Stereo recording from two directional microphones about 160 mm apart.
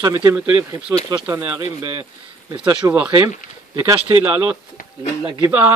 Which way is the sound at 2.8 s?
20° right (ahead or behind).